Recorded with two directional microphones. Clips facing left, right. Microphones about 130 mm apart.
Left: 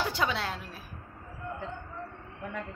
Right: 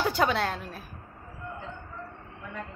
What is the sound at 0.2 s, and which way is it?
Speech, 50° right (ahead or behind).